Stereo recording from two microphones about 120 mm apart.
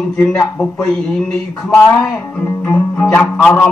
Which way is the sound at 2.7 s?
10° left (ahead or behind).